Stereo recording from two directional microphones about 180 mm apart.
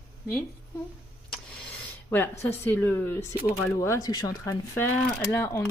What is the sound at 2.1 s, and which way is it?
Speech, 10° left (ahead or behind).